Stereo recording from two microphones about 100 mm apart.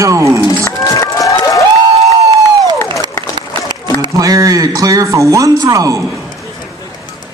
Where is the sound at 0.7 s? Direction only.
30° left (ahead or behind).